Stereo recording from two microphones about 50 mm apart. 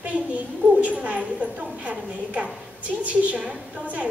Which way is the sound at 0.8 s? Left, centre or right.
Right.